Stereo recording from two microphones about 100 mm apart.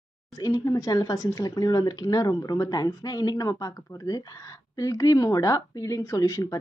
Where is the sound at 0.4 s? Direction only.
35° left (ahead or behind).